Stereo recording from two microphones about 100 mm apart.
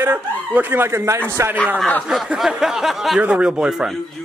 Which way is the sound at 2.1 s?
5° right (ahead or behind).